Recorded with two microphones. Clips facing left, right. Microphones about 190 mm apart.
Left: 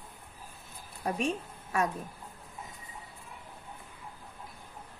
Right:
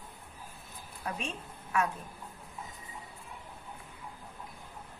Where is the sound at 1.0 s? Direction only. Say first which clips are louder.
Left 7 dB; 40° left (ahead or behind).